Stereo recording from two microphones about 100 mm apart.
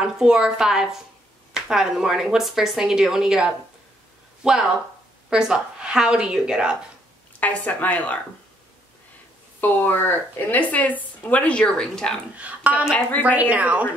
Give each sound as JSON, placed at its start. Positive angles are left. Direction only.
{"t": 0.0, "sound": "a woman's voice", "side_deg": -5}
{"t": 7.3, "sound": "a woman's voice", "side_deg": 15}
{"t": 9.6, "sound": "a woman's voice", "side_deg": 20}
{"t": 12.4, "sound": "a woman's voice", "side_deg": -15}